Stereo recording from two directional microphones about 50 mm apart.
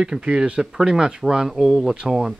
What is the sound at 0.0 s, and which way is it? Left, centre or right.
Speech, centre.